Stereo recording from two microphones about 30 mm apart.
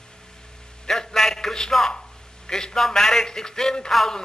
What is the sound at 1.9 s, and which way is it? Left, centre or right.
A man's voice, left.